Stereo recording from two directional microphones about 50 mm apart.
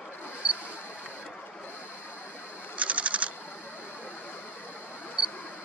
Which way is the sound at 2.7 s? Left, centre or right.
Right.